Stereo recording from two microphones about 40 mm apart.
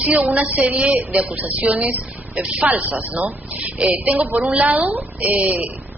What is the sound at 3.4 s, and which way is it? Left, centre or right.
Speech, right.